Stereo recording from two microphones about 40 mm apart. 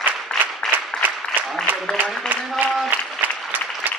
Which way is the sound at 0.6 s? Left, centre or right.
Centre.